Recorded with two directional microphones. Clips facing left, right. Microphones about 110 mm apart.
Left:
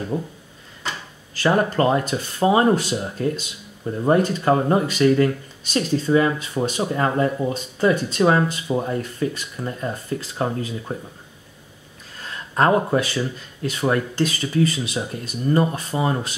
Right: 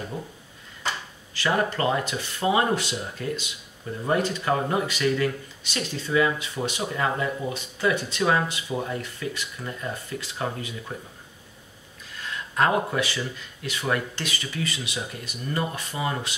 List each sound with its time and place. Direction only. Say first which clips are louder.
0.1 s speech: left 12 dB; 30° left (ahead or behind)
1.3 s speech: left 5 dB; 40° left (ahead or behind)
12.5 s speech: left 5 dB; 35° left (ahead or behind)